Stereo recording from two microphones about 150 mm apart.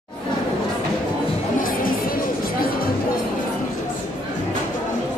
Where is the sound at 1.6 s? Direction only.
70° left (ahead or behind).